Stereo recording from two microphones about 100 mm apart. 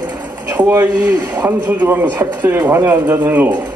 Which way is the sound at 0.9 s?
40° right (ahead or behind).